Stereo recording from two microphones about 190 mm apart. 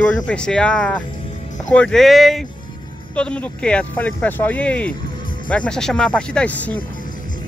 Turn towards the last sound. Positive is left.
turn(degrees=5)  # may be behind; listen again after turning